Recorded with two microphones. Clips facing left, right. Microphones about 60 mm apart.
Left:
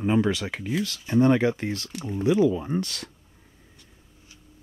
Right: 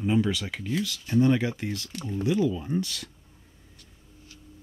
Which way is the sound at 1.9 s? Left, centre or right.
Left.